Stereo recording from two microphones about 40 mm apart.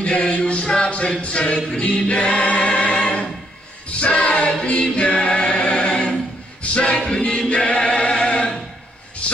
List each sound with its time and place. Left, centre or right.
0.0 s music: left
1.2 s a sound: left
1.7 s choir: left
9.2 s music: left